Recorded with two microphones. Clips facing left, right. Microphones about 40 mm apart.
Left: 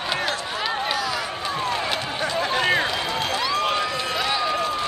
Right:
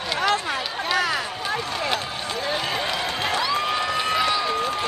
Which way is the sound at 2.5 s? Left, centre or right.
Left.